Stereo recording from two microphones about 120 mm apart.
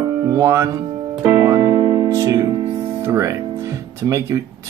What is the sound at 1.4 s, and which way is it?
Music, 25° right (ahead or behind).